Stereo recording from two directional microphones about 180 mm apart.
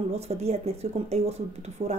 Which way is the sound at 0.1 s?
35° right (ahead or behind).